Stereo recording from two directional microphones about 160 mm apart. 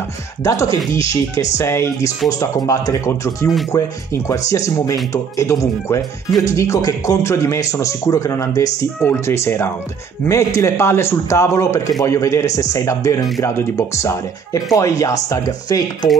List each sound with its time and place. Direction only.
0.4 s a man's voice: 20° left (ahead or behind)